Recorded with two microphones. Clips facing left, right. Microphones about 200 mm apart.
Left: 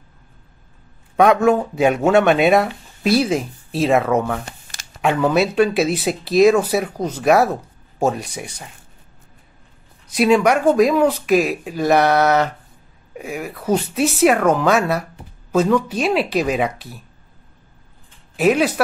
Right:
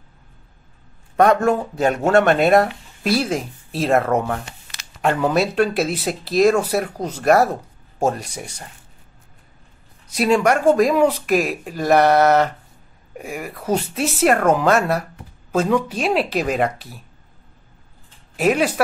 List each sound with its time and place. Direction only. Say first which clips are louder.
1.1 s speech: left 2 dB; 5° left (ahead or behind)
4.5 s a sound: left 3 dB; 50° left (ahead or behind)
5.0 s speech: left 2 dB; centre (ahead or behind)
10.1 s speech: left 2 dB; 5° left (ahead or behind)
18.4 s speech: left 2 dB; centre (ahead or behind)